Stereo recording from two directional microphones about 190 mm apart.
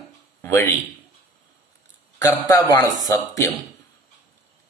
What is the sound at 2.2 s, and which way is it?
A man's voice, 20° left (ahead or behind).